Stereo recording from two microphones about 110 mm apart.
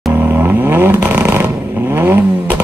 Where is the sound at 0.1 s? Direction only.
15° right (ahead or behind).